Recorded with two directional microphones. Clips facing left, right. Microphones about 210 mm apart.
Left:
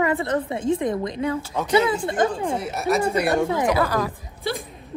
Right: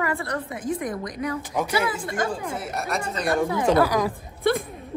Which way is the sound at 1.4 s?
15° right (ahead or behind).